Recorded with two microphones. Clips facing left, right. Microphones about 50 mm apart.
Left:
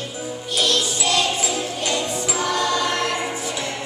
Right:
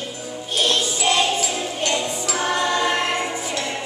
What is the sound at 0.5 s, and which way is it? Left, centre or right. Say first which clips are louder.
Jingle bell: even; right.